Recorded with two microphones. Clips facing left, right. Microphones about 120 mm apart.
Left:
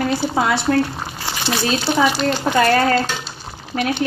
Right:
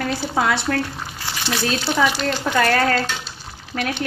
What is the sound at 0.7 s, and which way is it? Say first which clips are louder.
Crumpling: left 6 dB; 35° left (ahead or behind).